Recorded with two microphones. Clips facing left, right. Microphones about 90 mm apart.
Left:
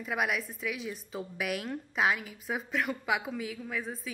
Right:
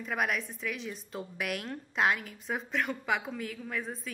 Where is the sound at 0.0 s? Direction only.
5° left (ahead or behind).